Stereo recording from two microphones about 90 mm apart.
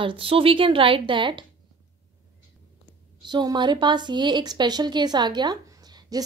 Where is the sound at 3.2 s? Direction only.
55° right (ahead or behind).